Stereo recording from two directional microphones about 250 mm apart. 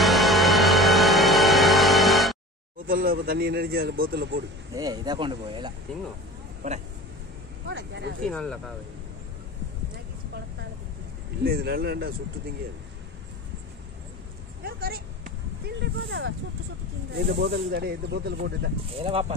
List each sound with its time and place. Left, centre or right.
0.0 s music: centre
2.9 s a man's voice: right
4.7 s speech: centre
7.6 s speech: right
8.2 s speech: centre
11.4 s a man's voice: right
14.6 s a sound: right
17.1 s a man's voice: right
18.9 s speech: right